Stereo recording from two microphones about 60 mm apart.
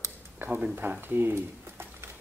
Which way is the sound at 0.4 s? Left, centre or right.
Right.